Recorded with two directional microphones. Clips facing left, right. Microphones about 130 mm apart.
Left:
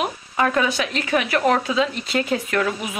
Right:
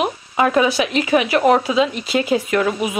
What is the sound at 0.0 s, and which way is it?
Speech, 15° right (ahead or behind).